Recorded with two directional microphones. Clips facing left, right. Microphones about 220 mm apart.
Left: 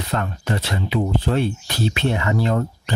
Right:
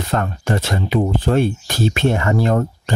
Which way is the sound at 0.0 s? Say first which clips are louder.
Right 4 dB; 50° right (ahead or behind).